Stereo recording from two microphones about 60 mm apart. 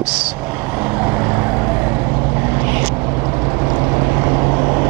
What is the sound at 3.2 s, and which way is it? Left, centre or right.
Vehicle, right.